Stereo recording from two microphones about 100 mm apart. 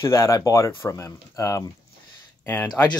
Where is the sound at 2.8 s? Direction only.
20° left (ahead or behind).